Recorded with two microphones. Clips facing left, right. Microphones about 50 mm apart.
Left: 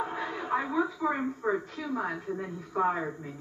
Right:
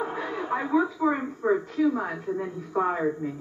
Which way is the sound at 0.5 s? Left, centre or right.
Centre.